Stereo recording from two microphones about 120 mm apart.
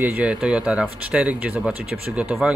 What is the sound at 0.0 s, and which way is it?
Speech, 15° right (ahead or behind).